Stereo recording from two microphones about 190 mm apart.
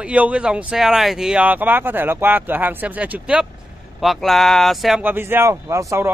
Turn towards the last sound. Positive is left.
turn(degrees=-15)  # may be behind; listen again after turning